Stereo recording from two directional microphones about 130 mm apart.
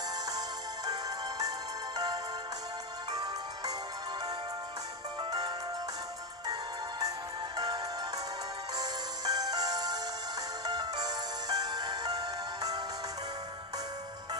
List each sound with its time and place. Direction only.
0.8 s music: 30° right (ahead or behind)
3.1 s music: 30° right (ahead or behind)
5.2 s music: 30° right (ahead or behind)